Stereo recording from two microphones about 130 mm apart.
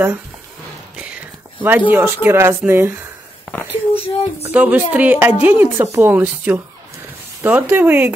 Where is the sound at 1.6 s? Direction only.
15° right (ahead or behind).